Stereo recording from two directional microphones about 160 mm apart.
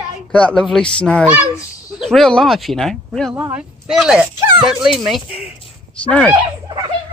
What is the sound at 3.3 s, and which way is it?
Speech, 15° right (ahead or behind).